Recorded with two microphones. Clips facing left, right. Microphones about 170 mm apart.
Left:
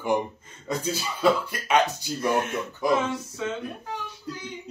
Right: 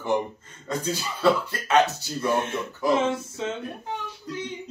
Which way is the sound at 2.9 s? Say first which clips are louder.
Right 3 dB; 25° right (ahead or behind).